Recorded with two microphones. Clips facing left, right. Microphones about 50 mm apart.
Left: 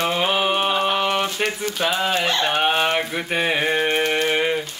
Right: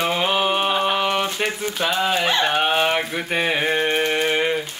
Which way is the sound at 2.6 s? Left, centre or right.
Centre.